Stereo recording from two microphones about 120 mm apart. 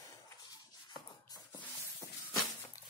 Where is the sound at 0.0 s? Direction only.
30° left (ahead or behind).